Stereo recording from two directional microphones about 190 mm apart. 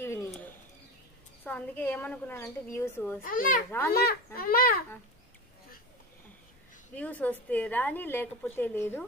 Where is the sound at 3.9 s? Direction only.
50° left (ahead or behind).